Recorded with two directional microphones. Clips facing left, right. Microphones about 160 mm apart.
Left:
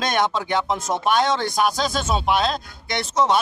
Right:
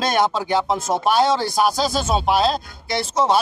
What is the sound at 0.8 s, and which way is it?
Speech, 5° right (ahead or behind).